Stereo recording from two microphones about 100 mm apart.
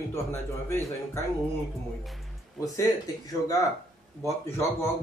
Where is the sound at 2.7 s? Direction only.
35° left (ahead or behind).